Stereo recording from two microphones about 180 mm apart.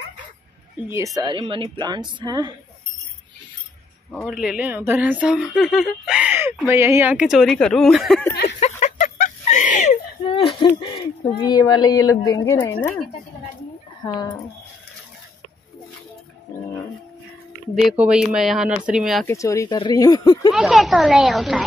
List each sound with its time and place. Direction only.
0.8 s a woman's voice: 15° right (ahead or behind)
4.3 s speech: 5° right (ahead or behind)
8.5 s a sound: 40° left (ahead or behind)
10.3 s speech: 25° left (ahead or behind)
14.0 s speech: 20° left (ahead or behind)
17.7 s speech: 5° right (ahead or behind)
19.2 s speech: 15° left (ahead or behind)
20.5 s speech: centre (ahead or behind)